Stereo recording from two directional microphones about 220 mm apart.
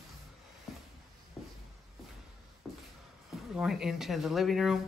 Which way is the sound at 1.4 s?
Centre (ahead or behind).